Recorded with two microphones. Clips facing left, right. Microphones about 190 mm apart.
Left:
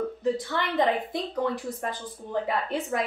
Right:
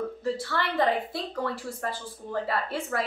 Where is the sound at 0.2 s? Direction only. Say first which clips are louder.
Left 2 dB; 20° left (ahead or behind).